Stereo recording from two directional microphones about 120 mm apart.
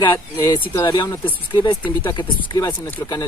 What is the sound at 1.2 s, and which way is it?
Speech, 40° left (ahead or behind).